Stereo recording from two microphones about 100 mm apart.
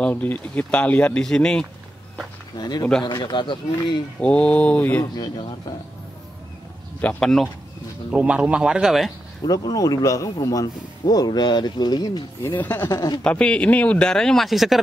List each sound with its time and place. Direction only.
0.0 s speech: 15° left (ahead or behind)
2.5 s speech: 45° left (ahead or behind)
4.2 s speech: 10° left (ahead or behind)
5.1 s speech: 45° left (ahead or behind)
7.0 s speech: 15° left (ahead or behind)
8.1 s speech: 10° right (ahead or behind)
9.5 s speech: 40° left (ahead or behind)
12.5 s speech: 20° left (ahead or behind)
12.8 s speech: 30° left (ahead or behind)
13.2 s speech: 10° left (ahead or behind)